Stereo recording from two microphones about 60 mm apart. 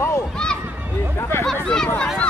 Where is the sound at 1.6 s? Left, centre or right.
Centre.